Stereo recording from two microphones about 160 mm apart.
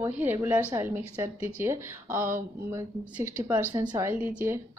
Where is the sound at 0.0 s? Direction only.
15° right (ahead or behind).